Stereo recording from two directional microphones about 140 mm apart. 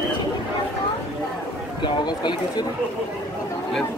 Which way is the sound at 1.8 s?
30° left (ahead or behind).